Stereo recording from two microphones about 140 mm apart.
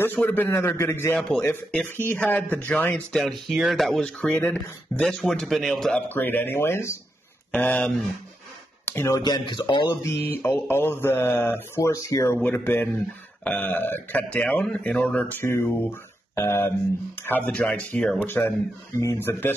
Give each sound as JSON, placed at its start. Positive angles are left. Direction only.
{"t": 0.0, "sound": "speech", "side_deg": 15}
{"t": 3.2, "sound": "speech", "side_deg": 0}
{"t": 8.8, "sound": "speech", "side_deg": 20}
{"t": 10.4, "sound": "speech", "side_deg": 15}
{"t": 17.5, "sound": "speech", "side_deg": 10}